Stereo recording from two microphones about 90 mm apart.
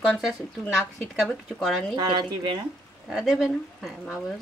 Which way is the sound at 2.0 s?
55° right (ahead or behind).